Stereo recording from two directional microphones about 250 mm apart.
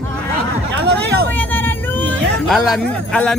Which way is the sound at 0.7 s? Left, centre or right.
Right.